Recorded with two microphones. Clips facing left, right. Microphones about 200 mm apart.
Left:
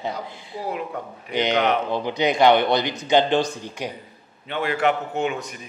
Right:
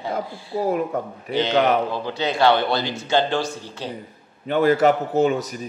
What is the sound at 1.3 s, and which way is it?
A man's voice, 15° left (ahead or behind).